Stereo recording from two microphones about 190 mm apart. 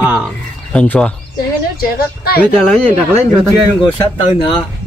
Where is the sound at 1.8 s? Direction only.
55° left (ahead or behind).